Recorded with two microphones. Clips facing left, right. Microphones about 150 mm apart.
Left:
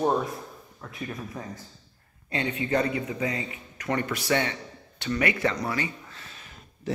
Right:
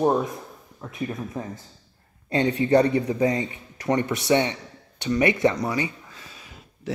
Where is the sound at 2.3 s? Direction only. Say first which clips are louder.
Right 7 dB; 35° right (ahead or behind).